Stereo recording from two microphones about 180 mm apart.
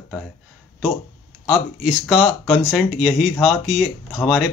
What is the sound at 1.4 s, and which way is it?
Speech, centre (ahead or behind).